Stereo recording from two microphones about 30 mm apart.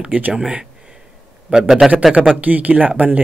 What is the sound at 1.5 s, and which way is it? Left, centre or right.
Speech, right.